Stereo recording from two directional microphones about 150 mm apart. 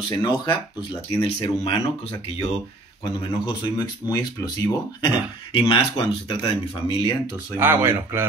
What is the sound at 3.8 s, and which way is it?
Speech, 25° left (ahead or behind).